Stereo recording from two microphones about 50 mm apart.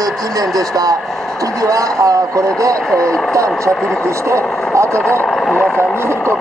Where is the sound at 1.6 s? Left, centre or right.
Right.